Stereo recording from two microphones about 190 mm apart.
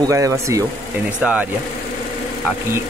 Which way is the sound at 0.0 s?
15° right (ahead or behind).